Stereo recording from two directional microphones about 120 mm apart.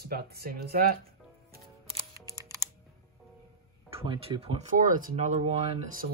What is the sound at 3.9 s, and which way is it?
Speech, 50° right (ahead or behind).